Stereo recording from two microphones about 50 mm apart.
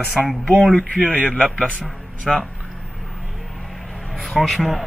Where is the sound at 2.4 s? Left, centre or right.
Centre.